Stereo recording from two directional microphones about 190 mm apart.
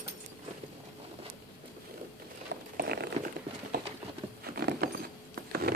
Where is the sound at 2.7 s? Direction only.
55° right (ahead or behind).